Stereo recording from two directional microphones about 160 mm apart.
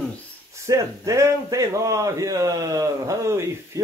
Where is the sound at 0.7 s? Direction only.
20° right (ahead or behind).